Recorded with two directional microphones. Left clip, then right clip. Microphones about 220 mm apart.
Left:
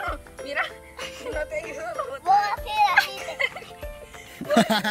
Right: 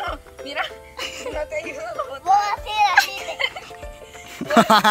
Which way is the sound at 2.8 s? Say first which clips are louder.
Right 4 dB; 10° left (ahead or behind).